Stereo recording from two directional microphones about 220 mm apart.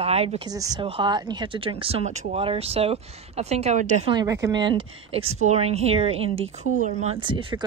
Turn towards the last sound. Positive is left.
turn(degrees=-25)  # may be behind; listen again after turning